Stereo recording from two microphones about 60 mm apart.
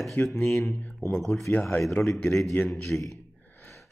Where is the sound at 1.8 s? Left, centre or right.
Centre.